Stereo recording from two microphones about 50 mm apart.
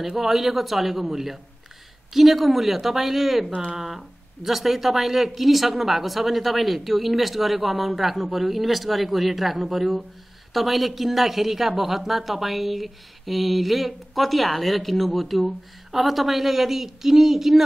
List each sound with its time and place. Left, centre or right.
0.0 s speech: centre